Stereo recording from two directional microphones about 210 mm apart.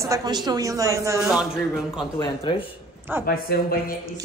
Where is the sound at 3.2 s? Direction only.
45° left (ahead or behind).